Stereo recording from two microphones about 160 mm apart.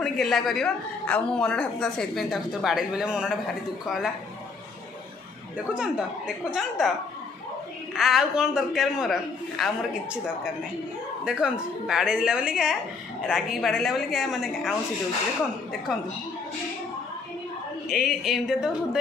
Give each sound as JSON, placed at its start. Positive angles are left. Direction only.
{"t": 0.0, "sound": "speech", "side_deg": 0}
{"t": 5.8, "sound": "speech", "side_deg": -5}
{"t": 7.9, "sound": "speech", "side_deg": 0}
{"t": 11.2, "sound": "speech", "side_deg": -5}
{"t": 17.8, "sound": "speech", "side_deg": 0}